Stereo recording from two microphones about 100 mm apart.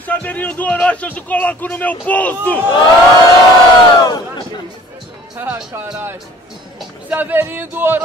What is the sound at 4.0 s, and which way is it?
Speech, 45° left (ahead or behind).